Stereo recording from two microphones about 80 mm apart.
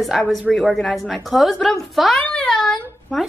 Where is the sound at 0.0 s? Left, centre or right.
Centre.